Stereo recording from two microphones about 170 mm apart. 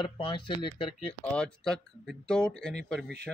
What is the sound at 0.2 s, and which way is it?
Speech, 30° left (ahead or behind).